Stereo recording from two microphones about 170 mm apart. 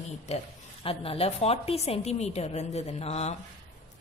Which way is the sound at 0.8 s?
35° left (ahead or behind).